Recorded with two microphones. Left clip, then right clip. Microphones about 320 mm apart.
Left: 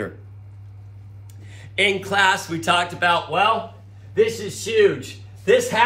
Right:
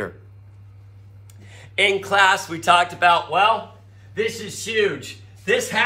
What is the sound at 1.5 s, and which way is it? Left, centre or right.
Speech, centre.